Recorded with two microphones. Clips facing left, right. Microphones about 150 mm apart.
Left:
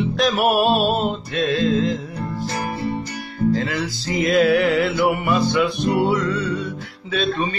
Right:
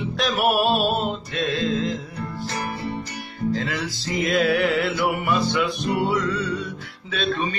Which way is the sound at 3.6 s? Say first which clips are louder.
Left 3 dB; centre (ahead or behind).